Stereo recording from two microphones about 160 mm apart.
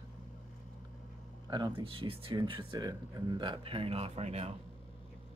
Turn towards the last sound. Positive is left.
turn(degrees=-40)  # may be behind; listen again after turning